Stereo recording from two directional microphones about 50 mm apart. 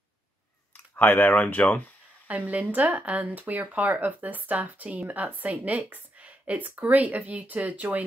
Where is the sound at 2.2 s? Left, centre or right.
Right.